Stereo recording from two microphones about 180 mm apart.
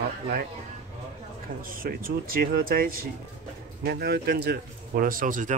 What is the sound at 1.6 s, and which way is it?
Speech, 55° right (ahead or behind).